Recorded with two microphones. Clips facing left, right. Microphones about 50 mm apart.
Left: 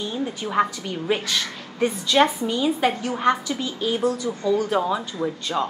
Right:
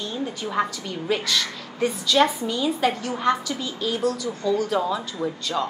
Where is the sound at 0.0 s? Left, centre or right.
Centre.